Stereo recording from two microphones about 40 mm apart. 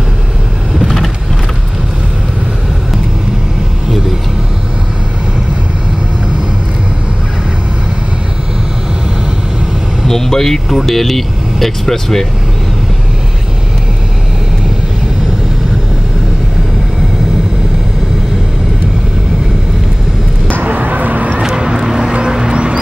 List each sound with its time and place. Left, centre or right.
0.7 s vehicle: centre
10.0 s vehicle: centre
10.8 s speech: centre
20.6 s a sound: right
21.4 s music: centre